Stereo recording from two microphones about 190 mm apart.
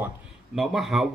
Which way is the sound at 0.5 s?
Centre (ahead or behind).